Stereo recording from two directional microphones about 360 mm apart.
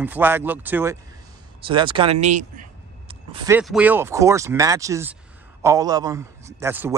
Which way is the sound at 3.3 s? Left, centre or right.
Centre.